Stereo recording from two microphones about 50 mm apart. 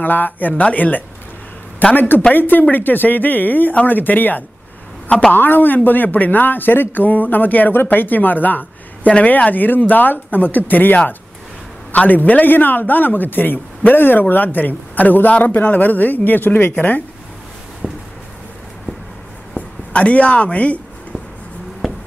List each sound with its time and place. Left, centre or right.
0.0 s speech: left
17.8 s a sound: left
19.9 s speech: left